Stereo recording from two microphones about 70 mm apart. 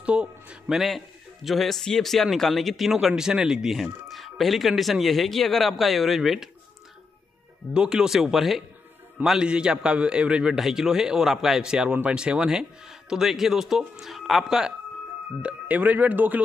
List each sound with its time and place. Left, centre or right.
0.0 s speech: centre
0.7 s a man's voice: centre
7.7 s a man's voice: centre
15.4 s speech: right